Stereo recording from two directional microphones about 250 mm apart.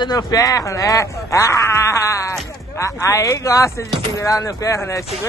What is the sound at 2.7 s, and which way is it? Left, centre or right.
Speech, centre.